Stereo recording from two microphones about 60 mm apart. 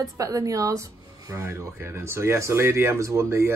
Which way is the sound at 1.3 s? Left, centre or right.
Right.